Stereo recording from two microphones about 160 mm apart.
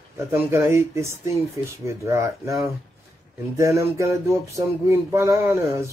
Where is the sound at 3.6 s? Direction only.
20° right (ahead or behind).